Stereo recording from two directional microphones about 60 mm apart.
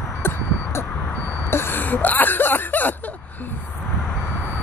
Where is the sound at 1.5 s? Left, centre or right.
Left.